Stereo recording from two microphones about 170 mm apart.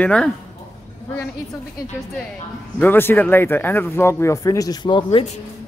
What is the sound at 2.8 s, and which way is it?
Speech, 10° left (ahead or behind).